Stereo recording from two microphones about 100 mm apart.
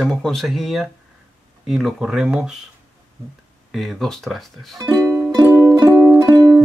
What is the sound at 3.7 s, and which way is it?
Speech, centre (ahead or behind).